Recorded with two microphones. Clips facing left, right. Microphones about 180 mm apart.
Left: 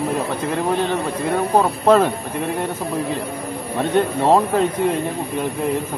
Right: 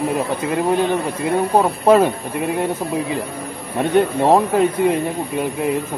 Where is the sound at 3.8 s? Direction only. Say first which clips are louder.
Right 3 dB; 15° right (ahead or behind).